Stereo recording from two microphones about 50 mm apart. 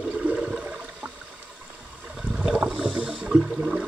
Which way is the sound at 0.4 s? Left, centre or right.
Centre.